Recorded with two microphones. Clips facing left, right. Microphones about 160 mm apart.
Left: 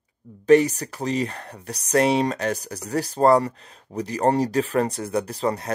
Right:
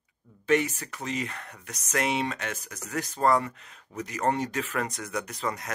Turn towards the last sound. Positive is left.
turn(degrees=30)  # may be behind; listen again after turning